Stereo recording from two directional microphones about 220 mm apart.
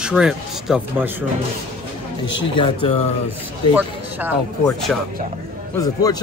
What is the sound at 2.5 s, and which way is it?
Speech, 20° left (ahead or behind).